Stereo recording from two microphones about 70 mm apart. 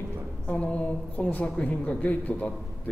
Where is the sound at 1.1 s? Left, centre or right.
Centre.